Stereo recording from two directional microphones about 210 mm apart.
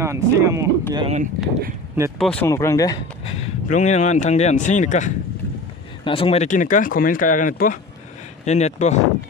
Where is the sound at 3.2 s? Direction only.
30° left (ahead or behind).